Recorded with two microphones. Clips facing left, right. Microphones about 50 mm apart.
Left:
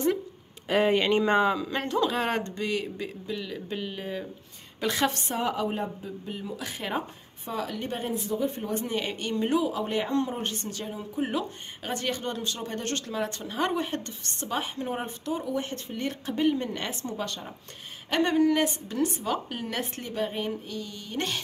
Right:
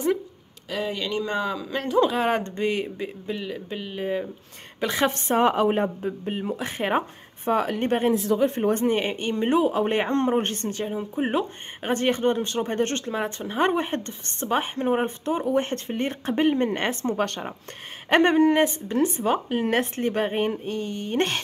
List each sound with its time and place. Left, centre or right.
0.7 s speech: left
1.5 s a man's voice: centre
2.0 s speech: centre
2.4 s speech: right
3.5 s speech: centre
5.1 s speech: right
8.3 s speech: right
19.6 s speech: right